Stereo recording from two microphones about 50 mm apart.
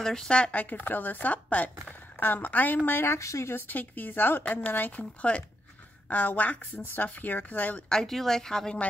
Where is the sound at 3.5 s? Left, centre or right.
Left.